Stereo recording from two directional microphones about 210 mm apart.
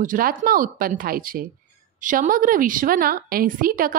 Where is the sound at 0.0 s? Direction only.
40° right (ahead or behind).